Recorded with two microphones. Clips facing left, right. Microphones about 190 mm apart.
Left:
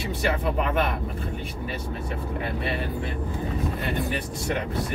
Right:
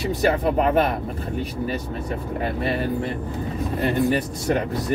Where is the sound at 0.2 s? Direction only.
40° right (ahead or behind).